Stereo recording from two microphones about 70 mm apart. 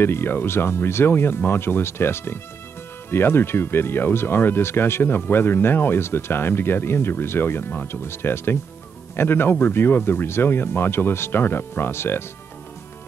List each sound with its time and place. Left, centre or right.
0.0 s speech: left